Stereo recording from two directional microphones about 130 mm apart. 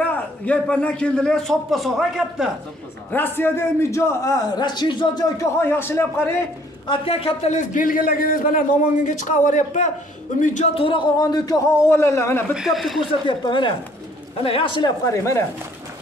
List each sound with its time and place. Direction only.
0.0 s a man's voice: 10° left (ahead or behind)
3.1 s a man's voice: 15° left (ahead or behind); by 5.2 s 35° left (ahead or behind)
5.4 s a man's voice: 15° left (ahead or behind)
6.9 s a woman's voice: 45° left (ahead or behind)
7.5 s a man's voice: 85° left; by 10.7 s 70° left (ahead or behind)
10.7 s a man's voice: 40° left (ahead or behind); by 12.5 s 20° left (ahead or behind)
12.5 s a man's voice: centre (ahead or behind)
13.3 s speech: 35° left (ahead or behind)
15.1 s a man's voice: 20° left (ahead or behind)